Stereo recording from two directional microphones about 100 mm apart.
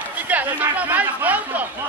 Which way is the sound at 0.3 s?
15° right (ahead or behind).